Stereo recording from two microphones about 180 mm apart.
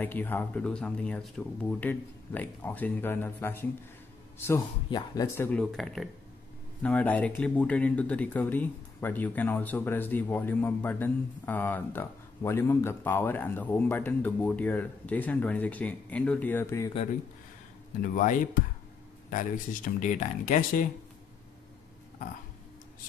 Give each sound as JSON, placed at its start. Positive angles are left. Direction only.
{"t": 0.0, "sound": "speech", "side_deg": 10}
{"t": 4.9, "sound": "speech", "side_deg": 20}
{"t": 5.6, "sound": "speech", "side_deg": 0}
{"t": 18.1, "sound": "speech", "side_deg": 45}